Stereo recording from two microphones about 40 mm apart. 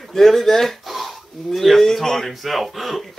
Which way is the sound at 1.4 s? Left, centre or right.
Centre.